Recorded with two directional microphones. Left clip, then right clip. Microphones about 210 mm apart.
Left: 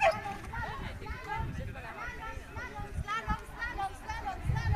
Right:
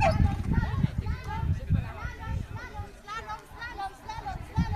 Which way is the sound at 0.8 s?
60° right (ahead or behind).